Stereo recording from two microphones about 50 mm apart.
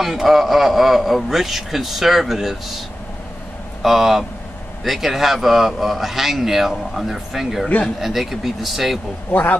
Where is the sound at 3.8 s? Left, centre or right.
Centre.